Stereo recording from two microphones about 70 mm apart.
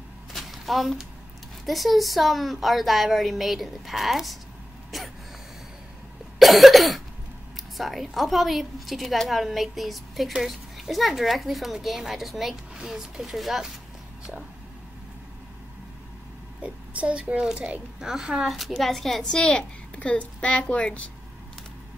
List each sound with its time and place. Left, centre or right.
0.3 s a sound: centre
1.7 s a woman's voice: centre
4.9 s a sound: centre
6.4 s cough: centre
7.5 s a woman's voice: centre
16.6 s a woman's voice: centre